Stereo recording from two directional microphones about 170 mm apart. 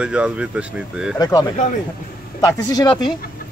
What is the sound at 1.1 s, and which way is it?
Speech, 20° left (ahead or behind).